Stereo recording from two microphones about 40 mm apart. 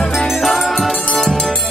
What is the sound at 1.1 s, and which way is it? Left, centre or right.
Music, centre.